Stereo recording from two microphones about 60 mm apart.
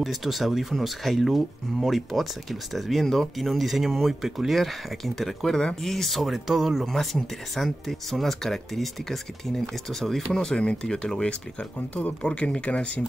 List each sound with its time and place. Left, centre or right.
0.0 s speech: centre
6.9 s speech: centre; by 13.0 s left